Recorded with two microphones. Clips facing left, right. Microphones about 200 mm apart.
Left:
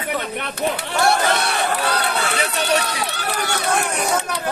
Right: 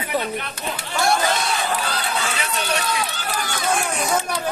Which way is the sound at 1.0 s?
65° left (ahead or behind).